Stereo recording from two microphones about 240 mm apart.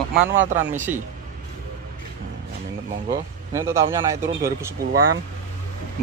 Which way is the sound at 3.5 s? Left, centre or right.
Centre.